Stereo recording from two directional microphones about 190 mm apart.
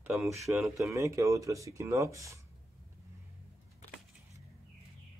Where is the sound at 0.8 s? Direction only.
15° right (ahead or behind).